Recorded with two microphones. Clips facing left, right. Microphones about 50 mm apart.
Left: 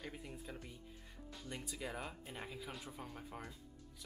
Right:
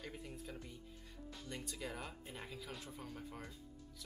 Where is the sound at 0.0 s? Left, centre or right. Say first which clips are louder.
Even; centre.